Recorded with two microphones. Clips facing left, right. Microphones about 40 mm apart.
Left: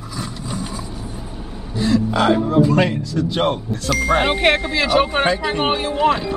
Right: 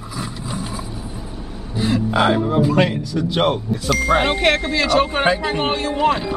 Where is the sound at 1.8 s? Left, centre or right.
Centre.